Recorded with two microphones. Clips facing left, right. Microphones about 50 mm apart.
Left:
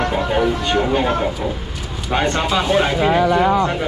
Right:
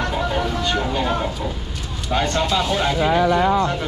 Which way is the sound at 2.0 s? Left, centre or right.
Left.